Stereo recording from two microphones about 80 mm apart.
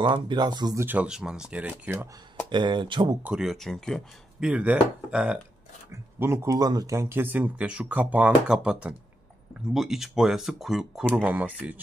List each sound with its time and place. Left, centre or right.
0.0 s speech: right
0.7 s speech: right
1.0 s speech: centre
2.5 s speech: right
3.3 s speech: centre
4.4 s speech: centre
5.9 s speech: right
7.0 s speech: right; by 11.1 s centre
11.2 s speech: centre